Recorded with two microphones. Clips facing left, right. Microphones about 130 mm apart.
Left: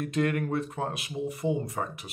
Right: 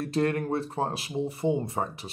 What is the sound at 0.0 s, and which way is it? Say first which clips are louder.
Speech: right 1 dB; 35° right (ahead or behind).